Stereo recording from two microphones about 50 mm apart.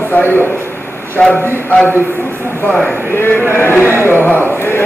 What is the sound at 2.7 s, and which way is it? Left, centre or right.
Speech, centre.